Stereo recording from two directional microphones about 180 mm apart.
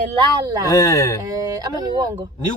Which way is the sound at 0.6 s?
15° left (ahead or behind).